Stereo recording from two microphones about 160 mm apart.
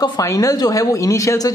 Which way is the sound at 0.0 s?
20° left (ahead or behind).